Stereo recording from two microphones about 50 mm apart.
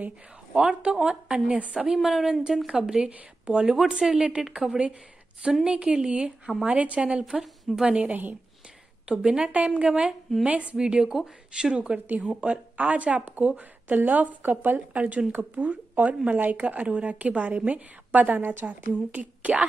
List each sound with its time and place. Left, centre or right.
0.5 s a woman's voice: centre
1.9 s a woman's voice: centre
6.6 s speech: right
7.2 s a woman's voice: centre
7.9 s a woman's voice: right
10.8 s a woman's voice: centre; by 18.4 s right
18.4 s a woman's voice: right
18.7 s speech: right